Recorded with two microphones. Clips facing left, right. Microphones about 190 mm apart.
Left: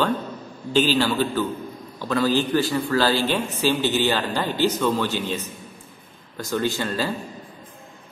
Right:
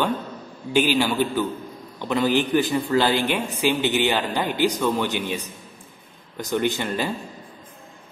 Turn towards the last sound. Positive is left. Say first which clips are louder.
# even
turn(degrees=-15)  # may be behind; listen again after turning